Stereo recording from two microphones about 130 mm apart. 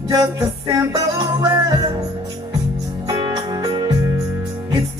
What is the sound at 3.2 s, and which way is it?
Music, 30° right (ahead or behind).